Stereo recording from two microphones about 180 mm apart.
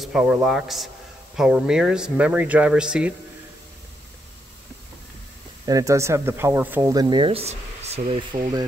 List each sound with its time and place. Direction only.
0.0 s speech: 5° right (ahead or behind)
5.7 s speech: 20° right (ahead or behind)